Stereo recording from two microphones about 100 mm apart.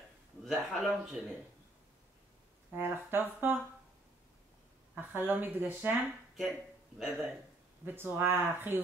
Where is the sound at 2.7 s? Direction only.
20° right (ahead or behind).